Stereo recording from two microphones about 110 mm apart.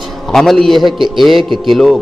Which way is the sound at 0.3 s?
5° left (ahead or behind).